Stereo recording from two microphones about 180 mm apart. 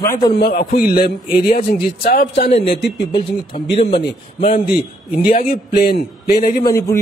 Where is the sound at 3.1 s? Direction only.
30° left (ahead or behind).